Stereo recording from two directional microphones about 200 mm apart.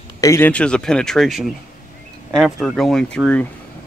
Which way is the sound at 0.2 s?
10° left (ahead or behind).